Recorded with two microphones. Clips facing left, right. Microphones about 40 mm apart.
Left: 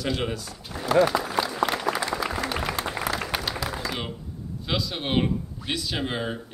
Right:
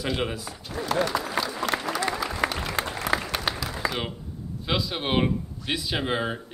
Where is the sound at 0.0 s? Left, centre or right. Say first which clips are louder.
Even; centre.